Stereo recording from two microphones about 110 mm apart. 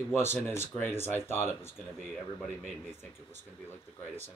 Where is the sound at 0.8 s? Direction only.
20° left (ahead or behind).